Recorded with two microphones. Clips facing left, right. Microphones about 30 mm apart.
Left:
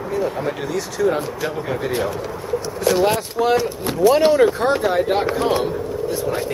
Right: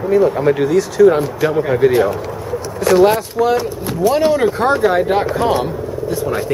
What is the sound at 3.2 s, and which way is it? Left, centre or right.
Speech, centre.